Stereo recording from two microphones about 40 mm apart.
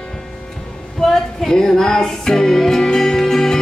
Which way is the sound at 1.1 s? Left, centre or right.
Centre.